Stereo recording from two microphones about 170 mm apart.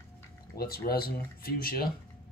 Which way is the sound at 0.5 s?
60° left (ahead or behind).